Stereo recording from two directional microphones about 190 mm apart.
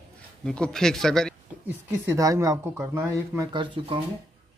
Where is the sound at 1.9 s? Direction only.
15° right (ahead or behind).